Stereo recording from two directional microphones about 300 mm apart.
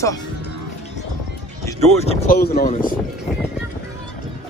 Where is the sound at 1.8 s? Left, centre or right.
Left.